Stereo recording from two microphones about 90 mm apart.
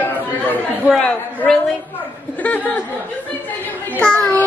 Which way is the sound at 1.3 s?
15° left (ahead or behind).